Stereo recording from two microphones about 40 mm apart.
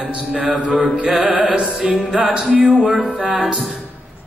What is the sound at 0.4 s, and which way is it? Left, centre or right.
A man's voice, right.